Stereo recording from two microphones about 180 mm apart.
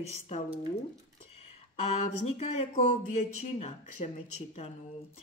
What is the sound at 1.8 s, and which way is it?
Speech, 40° left (ahead or behind).